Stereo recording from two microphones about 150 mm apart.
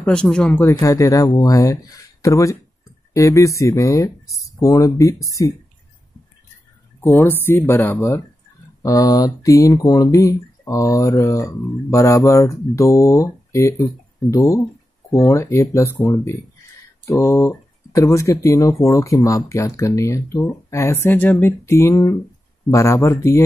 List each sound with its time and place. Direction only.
0.0 s speech: 5° left (ahead or behind); by 5.5 s 20° left (ahead or behind)
7.0 s speech: 15° left (ahead or behind)